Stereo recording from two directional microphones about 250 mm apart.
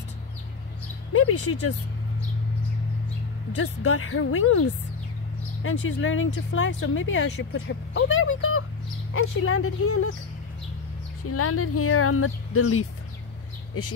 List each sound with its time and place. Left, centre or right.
1.1 s speech: left
3.5 s speech: left
11.2 s speech: left